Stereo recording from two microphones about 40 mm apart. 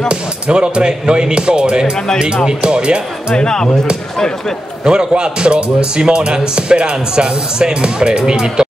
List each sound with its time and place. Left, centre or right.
0.1 s speech: right
3.3 s speech: centre
4.8 s speech: right